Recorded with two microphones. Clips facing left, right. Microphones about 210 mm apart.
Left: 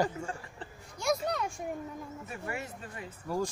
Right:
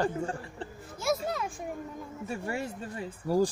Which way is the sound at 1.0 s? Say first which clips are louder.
Even; 5° right (ahead or behind).